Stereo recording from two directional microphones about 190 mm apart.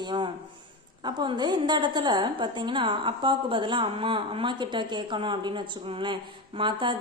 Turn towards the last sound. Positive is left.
turn(degrees=-25)  # may be behind; listen again after turning